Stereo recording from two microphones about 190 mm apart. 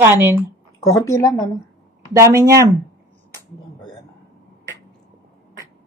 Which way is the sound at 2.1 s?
15° right (ahead or behind).